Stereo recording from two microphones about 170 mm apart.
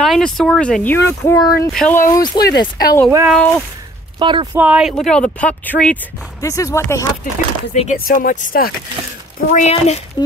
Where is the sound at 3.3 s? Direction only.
5° left (ahead or behind).